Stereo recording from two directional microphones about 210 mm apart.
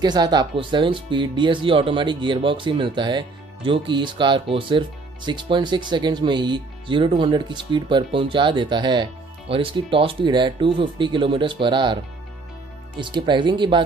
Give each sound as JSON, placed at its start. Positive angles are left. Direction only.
{"t": 0.0, "sound": "speech", "side_deg": -20}